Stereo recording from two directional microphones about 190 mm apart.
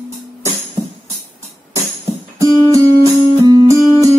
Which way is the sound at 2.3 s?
15° right (ahead or behind).